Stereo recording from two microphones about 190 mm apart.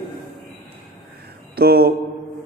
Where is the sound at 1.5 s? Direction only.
55° right (ahead or behind).